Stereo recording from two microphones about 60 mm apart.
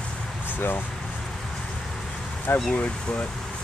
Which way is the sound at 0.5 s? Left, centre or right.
Left.